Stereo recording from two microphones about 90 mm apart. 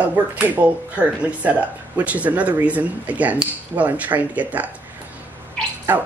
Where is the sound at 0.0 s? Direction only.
15° right (ahead or behind).